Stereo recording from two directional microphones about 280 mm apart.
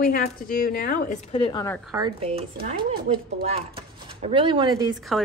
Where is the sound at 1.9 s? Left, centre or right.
Centre.